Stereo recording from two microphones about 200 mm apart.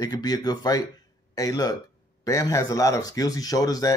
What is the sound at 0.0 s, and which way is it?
Speech, 20° left (ahead or behind).